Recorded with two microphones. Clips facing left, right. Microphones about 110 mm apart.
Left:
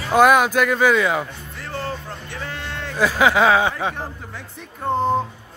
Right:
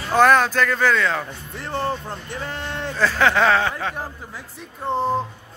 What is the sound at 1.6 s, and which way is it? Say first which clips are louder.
Music: right 4 dB; 25° right (ahead or behind).